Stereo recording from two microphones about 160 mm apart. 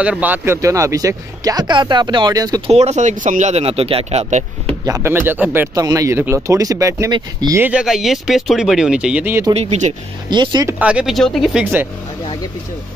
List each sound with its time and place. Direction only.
0.0 s speech: 10° right (ahead or behind)
2.7 s speech: 45° right (ahead or behind)
4.8 s speech: 20° right (ahead or behind)
7.6 s speech: 5° right (ahead or behind)
9.5 s speech: 45° right (ahead or behind)
10.3 s speech: 25° right (ahead or behind)
10.7 s speech: 10° right (ahead or behind)